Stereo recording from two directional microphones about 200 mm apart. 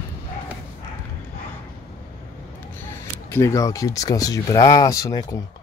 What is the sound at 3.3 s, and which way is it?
Speech, 15° left (ahead or behind).